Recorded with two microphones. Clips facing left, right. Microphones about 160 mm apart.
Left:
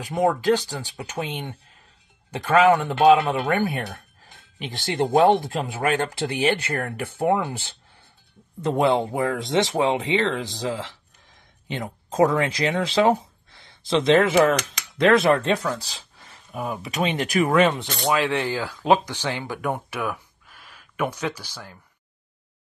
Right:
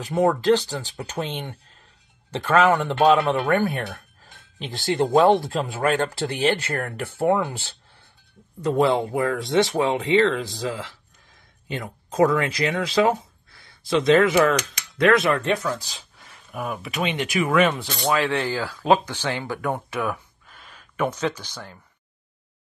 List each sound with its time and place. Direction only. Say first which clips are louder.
0.0 s speech: right 1 dB; 10° left (ahead or behind)
5.2 s speech: even; 20° left (ahead or behind)
11.6 s speech: left 1 dB; 25° left (ahead or behind)
17.1 s speech: left 3 dB; 40° left (ahead or behind)
17.5 s speech: right 1 dB; 25° left (ahead or behind); by 21.7 s 10° left (ahead or behind)